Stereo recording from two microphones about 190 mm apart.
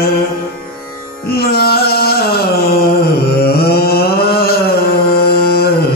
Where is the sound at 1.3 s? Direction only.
55° left (ahead or behind).